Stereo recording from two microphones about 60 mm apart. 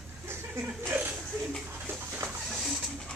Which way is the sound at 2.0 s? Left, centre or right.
Right.